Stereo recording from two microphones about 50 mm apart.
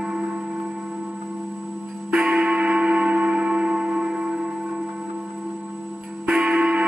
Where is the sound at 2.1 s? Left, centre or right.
Centre.